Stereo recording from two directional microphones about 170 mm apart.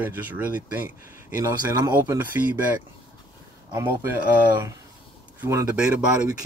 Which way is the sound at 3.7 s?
15° right (ahead or behind).